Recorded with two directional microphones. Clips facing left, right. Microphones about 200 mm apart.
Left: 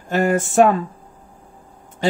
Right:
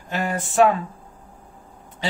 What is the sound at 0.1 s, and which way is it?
Speech, 45° left (ahead or behind).